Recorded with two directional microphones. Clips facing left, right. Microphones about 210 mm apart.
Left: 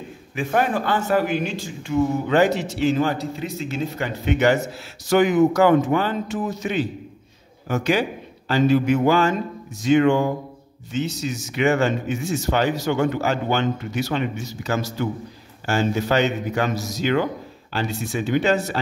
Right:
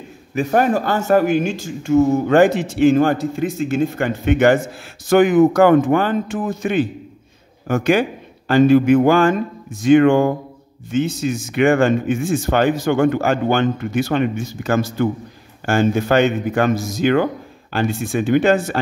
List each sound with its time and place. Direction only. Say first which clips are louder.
0.3 s speech: right 5 dB; 45° right (ahead or behind)